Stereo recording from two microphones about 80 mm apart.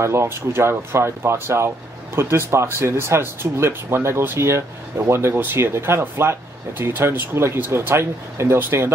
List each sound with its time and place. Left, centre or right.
0.0 s speech: right